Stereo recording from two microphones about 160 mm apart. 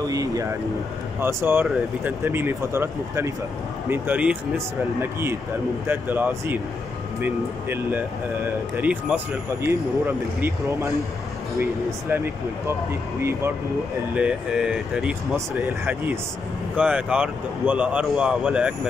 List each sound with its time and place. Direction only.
0.0 s speech: 20° right (ahead or behind)
13.2 s speech: 15° right (ahead or behind)
14.1 s speech: 5° right (ahead or behind)